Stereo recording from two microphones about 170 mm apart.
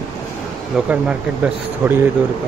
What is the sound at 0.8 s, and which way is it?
Speech, 5° right (ahead or behind).